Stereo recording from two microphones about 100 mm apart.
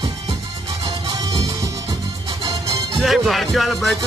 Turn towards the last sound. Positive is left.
turn(degrees=0)  # may be behind; listen again after turning